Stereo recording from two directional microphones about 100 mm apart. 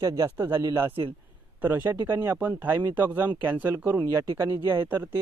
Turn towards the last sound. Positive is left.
turn(degrees=-20)  # may be behind; listen again after turning